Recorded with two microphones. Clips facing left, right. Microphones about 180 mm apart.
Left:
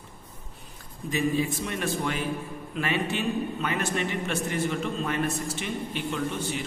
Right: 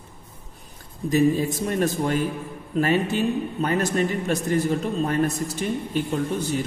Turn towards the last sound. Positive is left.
turn(degrees=-40)  # may be behind; listen again after turning